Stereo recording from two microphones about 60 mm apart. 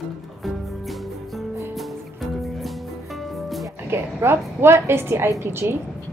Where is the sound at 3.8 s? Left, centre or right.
Right.